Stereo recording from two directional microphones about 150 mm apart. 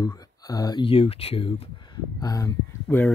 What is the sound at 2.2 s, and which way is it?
Speech, 20° left (ahead or behind).